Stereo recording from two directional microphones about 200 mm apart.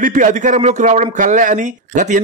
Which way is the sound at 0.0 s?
40° right (ahead or behind).